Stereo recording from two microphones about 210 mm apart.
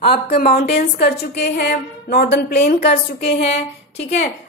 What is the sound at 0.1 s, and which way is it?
A woman's voice, 45° left (ahead or behind).